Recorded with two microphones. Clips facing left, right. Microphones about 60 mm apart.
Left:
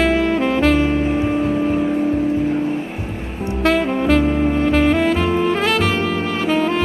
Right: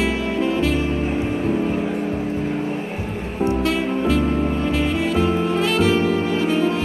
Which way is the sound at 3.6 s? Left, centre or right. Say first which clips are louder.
Left 4 dB; left.